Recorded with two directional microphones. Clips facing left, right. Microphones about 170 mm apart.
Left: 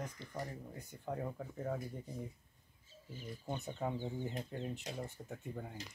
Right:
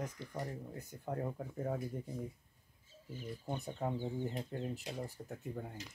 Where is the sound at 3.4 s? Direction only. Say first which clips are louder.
Even; centre (ahead or behind).